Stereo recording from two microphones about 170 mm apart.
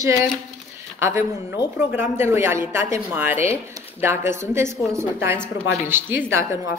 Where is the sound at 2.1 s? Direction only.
15° right (ahead or behind).